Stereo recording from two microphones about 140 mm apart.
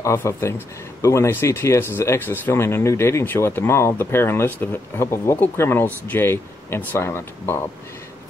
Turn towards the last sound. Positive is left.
turn(degrees=15)  # may be behind; listen again after turning